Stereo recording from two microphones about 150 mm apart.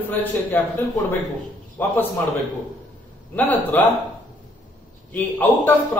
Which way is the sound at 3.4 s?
10° left (ahead or behind).